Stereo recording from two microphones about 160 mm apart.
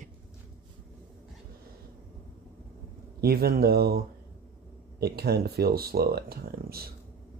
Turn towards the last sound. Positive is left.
turn(degrees=-70)  # may be behind; listen again after turning